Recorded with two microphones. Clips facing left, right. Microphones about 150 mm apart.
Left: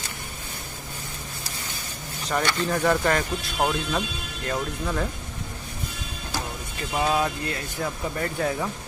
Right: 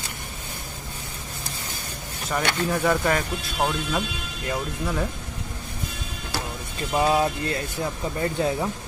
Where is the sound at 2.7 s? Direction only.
5° right (ahead or behind).